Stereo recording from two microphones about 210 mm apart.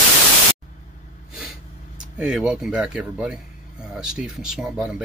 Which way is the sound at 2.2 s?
5° right (ahead or behind).